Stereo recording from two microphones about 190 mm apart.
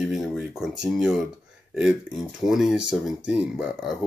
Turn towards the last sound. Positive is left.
turn(degrees=-5)  # may be behind; listen again after turning